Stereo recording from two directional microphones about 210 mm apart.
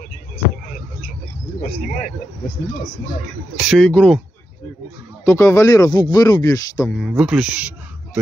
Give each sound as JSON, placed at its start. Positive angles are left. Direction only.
{"t": 3.5, "sound": "speech", "side_deg": 0}
{"t": 5.2, "sound": "speech", "side_deg": 15}
{"t": 6.9, "sound": "a man's voice", "side_deg": -5}